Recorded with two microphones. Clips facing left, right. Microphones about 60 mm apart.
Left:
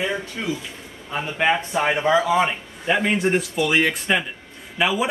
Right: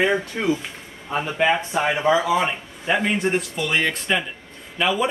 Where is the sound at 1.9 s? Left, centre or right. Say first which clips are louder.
Left 1 dB; centre.